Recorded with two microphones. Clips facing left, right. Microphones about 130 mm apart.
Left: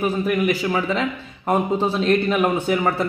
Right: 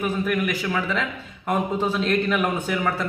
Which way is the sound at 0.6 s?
30° left (ahead or behind).